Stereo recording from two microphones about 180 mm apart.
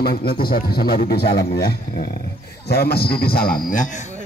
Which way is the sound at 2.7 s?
60° left (ahead or behind).